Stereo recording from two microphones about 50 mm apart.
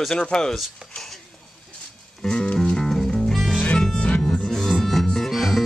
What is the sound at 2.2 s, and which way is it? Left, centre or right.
Music, centre.